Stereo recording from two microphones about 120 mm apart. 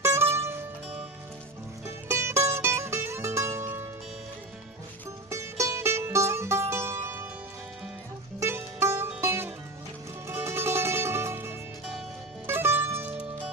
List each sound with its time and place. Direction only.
0.0 s music: 20° right (ahead or behind)
2.0 s music: 20° right (ahead or behind)
5.3 s music: 25° right (ahead or behind)
8.4 s music: 20° right (ahead or behind)